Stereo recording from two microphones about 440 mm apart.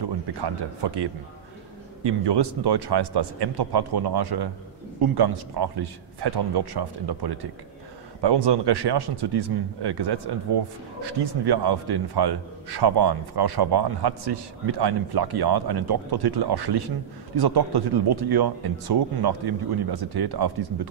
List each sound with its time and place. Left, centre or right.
0.4 s speech: right
2.0 s speech: right